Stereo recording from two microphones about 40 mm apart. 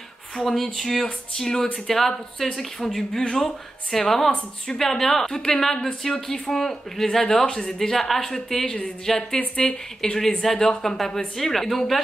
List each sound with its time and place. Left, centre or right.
0.4 s speech: centre